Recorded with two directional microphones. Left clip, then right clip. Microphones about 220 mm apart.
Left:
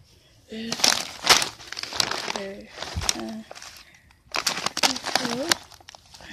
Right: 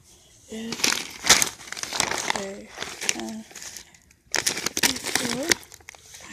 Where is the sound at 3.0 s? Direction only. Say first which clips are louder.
Left 1 dB; 5° left (ahead or behind).